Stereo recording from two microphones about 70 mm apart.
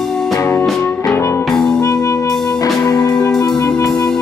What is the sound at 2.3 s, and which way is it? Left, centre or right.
Music, centre.